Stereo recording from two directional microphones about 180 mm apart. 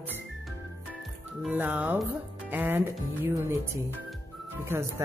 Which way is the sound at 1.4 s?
10° right (ahead or behind).